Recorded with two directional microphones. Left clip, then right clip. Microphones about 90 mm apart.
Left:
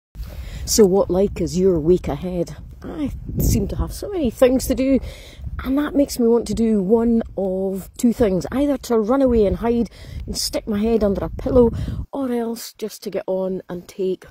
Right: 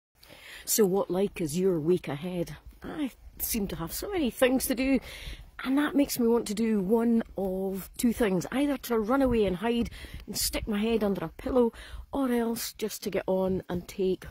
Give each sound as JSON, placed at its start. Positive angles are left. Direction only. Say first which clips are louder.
{"t": 0.7, "sound": "speech", "louder": "left 11 dB", "side_deg": 50}
{"t": 3.6, "sound": "speech", "louder": "left 7 dB", "side_deg": 25}
{"t": 4.2, "sound": "speech", "louder": "left 10 dB", "side_deg": 40}
{"t": 5.6, "sound": "speech", "louder": "left 7 dB", "side_deg": 30}
{"t": 10.7, "sound": "speech", "louder": "left 10 dB", "side_deg": 40}
{"t": 12.1, "sound": "speech", "louder": "left 5 dB", "side_deg": 35}
{"t": 13.9, "sound": "speech", "louder": "left 6 dB", "side_deg": 65}